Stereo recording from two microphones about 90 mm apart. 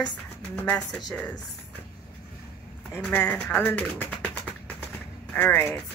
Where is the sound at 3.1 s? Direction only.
20° left (ahead or behind).